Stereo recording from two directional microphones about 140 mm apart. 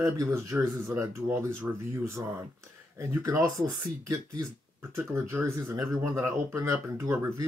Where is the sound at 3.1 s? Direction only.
20° right (ahead or behind).